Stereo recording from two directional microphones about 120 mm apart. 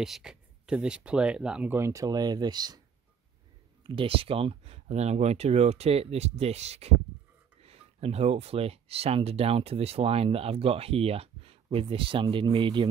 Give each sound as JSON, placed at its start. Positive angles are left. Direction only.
{"t": 0.0, "sound": "speech", "side_deg": -5}
{"t": 1.8, "sound": "speech", "side_deg": -25}
{"t": 3.8, "sound": "speech", "side_deg": -45}